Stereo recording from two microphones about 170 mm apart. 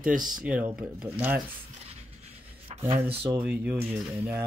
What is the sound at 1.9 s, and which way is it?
Pant, 40° right (ahead or behind).